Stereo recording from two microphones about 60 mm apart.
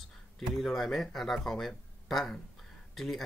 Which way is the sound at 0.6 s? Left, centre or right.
Centre.